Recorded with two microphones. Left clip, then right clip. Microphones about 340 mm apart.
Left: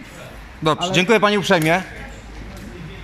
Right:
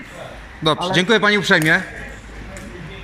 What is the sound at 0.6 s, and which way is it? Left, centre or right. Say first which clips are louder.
A man's voice: even; centre.